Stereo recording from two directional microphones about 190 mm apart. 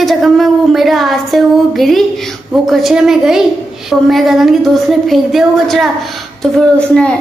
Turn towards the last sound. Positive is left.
turn(degrees=5)  # may be behind; listen again after turning